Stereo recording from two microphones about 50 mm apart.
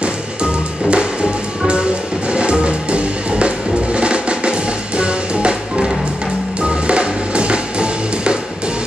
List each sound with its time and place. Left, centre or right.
0.0 s music: right